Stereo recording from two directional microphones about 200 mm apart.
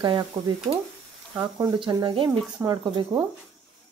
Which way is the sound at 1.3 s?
20° right (ahead or behind).